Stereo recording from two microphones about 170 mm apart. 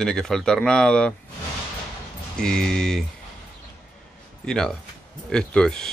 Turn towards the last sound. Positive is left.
turn(degrees=5)  # may be behind; listen again after turning